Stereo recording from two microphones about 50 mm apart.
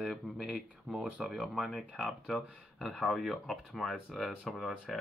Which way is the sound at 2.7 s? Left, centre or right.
Centre.